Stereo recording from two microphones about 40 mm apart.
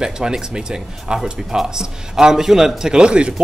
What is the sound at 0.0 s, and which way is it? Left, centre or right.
A man's voice, centre.